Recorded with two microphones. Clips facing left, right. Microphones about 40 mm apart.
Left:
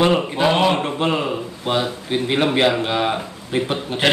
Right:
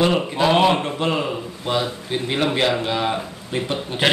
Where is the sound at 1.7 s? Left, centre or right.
Centre.